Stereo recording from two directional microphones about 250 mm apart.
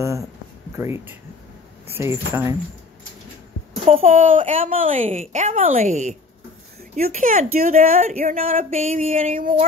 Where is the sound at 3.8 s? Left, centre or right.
Right.